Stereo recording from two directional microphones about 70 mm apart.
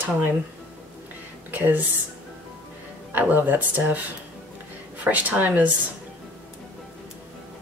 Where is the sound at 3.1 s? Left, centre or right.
Right.